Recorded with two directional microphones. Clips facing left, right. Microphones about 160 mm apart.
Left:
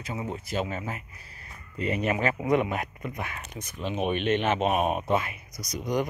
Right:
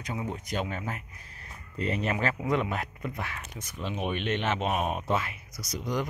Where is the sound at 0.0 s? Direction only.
5° left (ahead or behind).